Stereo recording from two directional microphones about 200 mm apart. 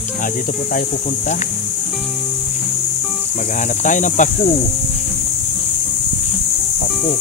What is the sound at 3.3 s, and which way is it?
Speech, 40° left (ahead or behind).